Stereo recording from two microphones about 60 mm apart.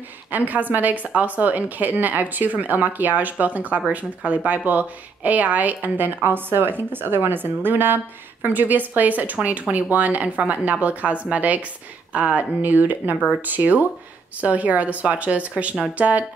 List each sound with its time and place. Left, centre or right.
0.3 s speech: right